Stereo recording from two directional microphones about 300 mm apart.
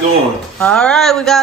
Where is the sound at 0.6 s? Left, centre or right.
Centre.